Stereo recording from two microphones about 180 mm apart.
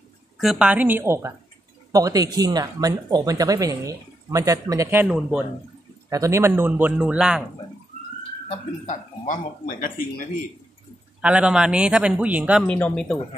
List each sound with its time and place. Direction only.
0.4 s speech: 5° right (ahead or behind); by 5.0 s 20° right (ahead or behind)
5.0 s speech: 5° right (ahead or behind)
6.0 s speech: 20° right (ahead or behind)
8.5 s speech: 40° left (ahead or behind)
11.1 s speech: 5° right (ahead or behind)
12.6 s speech: 5° left (ahead or behind)